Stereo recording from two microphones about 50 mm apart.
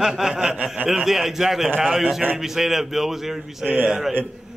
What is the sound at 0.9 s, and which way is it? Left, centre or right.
Speech, centre.